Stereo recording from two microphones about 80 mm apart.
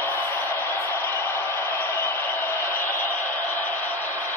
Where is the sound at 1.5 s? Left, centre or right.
Left.